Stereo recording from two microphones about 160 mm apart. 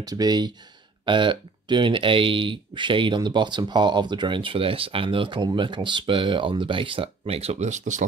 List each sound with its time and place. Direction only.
0.0 s speech: 25° right (ahead or behind); by 8.0 s 50° right (ahead or behind)